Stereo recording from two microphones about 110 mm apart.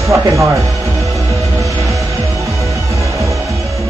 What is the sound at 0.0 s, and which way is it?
Music, 30° right (ahead or behind).